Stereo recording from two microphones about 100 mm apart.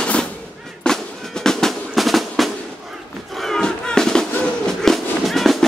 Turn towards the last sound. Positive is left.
turn(degrees=0)  # may be behind; listen again after turning